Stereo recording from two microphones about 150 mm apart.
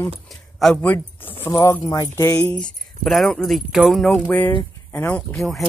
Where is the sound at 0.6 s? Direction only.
Centre (ahead or behind).